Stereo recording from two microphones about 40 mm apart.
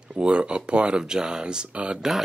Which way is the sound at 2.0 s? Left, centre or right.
Centre.